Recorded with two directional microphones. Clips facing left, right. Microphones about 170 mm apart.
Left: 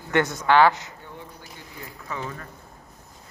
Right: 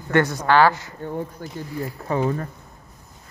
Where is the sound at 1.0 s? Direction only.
45° right (ahead or behind).